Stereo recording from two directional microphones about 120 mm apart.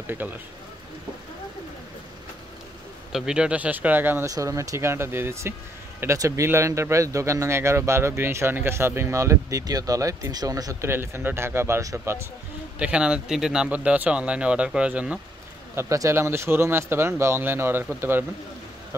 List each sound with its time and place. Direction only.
0.0 s speech: 15° right (ahead or behind)
3.1 s a man's voice: 5° right (ahead or behind)
4.3 s speech: 30° right (ahead or behind)
12.7 s a man's voice: 10° right (ahead or behind)
15.7 s speech: 25° right (ahead or behind)